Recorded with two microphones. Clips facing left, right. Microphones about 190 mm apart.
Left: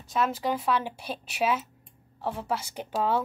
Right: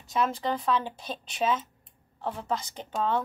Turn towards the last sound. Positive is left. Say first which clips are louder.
# left 1 dB
turn(degrees=10)  # may be behind; listen again after turning